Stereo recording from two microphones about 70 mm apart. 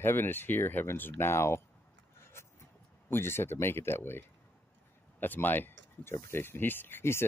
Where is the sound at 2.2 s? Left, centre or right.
Left.